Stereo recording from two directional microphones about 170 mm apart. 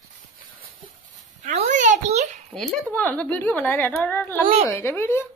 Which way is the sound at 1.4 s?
45° right (ahead or behind).